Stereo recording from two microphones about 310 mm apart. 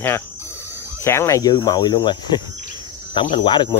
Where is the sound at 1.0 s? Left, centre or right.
Centre.